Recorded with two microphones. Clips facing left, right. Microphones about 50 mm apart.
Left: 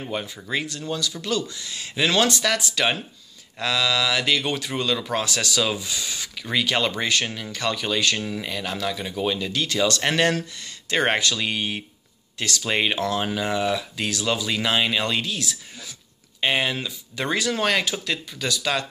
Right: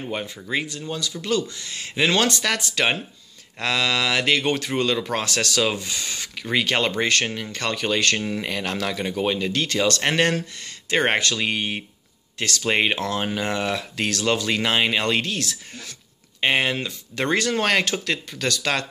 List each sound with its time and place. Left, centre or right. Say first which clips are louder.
0.1 s speech: right 1 dB; centre
1.2 s speech: right 2 dB; right
9.2 s speech: right 1 dB; right
10.0 s speech: even; right
12.6 s speech: right 2 dB; right
13.4 s speech: left 1 dB; right
16.3 s speech: right 2 dB; right